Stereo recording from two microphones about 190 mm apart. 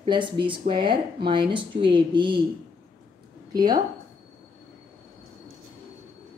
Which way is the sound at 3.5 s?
20° right (ahead or behind).